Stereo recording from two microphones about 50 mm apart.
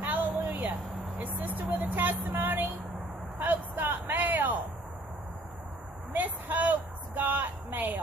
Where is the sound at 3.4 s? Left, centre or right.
Right.